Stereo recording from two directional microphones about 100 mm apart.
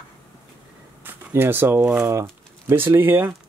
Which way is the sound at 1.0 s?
20° right (ahead or behind).